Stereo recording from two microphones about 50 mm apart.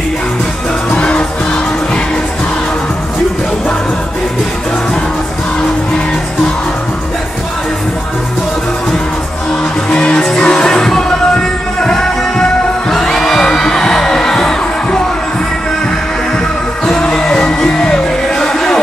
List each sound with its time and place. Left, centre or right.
0.9 s music: centre
9.8 s music: centre
12.9 s heart sounds: centre
16.8 s music: centre